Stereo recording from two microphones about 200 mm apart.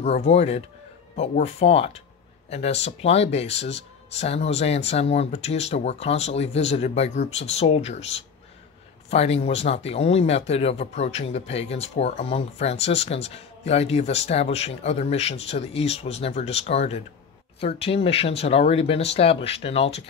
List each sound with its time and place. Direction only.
0.0 s speech: 30° left (ahead or behind)